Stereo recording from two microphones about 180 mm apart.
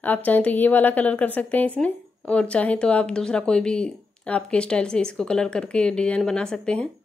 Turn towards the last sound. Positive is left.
turn(degrees=5)  # may be behind; listen again after turning